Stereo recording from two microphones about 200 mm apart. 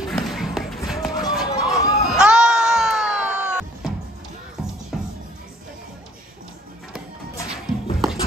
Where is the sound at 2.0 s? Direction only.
5° right (ahead or behind).